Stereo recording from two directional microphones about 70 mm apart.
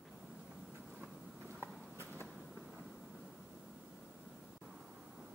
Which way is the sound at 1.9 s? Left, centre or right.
Right.